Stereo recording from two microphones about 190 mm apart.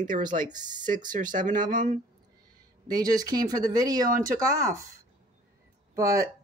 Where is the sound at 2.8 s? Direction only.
20° right (ahead or behind).